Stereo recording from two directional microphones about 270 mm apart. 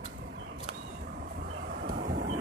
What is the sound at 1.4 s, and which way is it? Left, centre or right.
Vehicle, right.